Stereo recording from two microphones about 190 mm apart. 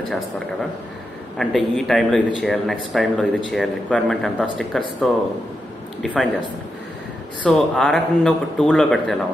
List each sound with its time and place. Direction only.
1.4 s a man's voice: centre (ahead or behind)
7.4 s a man's voice: 5° left (ahead or behind)